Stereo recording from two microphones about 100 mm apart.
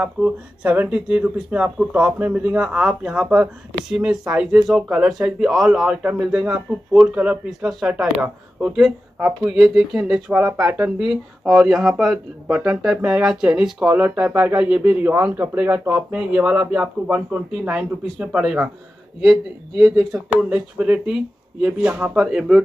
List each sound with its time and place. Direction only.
0.0 s speech: 15° right (ahead or behind)
10.4 s speech: 25° right (ahead or behind)
11.0 s speech: 5° right (ahead or behind)
19.8 s speech: 35° right (ahead or behind)
20.4 s speech: 15° right (ahead or behind)